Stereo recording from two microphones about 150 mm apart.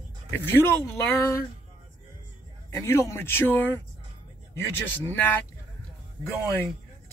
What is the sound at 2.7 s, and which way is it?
Speech, 15° left (ahead or behind).